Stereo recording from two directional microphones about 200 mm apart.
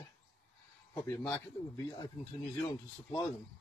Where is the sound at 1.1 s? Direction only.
15° left (ahead or behind).